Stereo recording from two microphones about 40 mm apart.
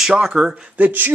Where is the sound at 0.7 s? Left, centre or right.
Right.